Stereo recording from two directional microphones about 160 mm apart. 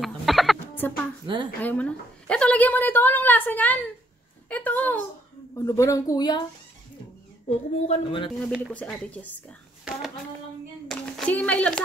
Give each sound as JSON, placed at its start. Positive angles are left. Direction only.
{"t": 0.0, "sound": "music", "side_deg": 0}
{"t": 0.7, "sound": "a sound", "side_deg": 10}
{"t": 1.2, "sound": "a woman's voice", "side_deg": -30}
{"t": 1.6, "sound": "a woman's voice", "side_deg": 10}
{"t": 7.4, "sound": "a woman's voice", "side_deg": 40}
{"t": 8.7, "sound": "a woman's voice", "side_deg": 5}
{"t": 10.9, "sound": "a sound", "side_deg": 5}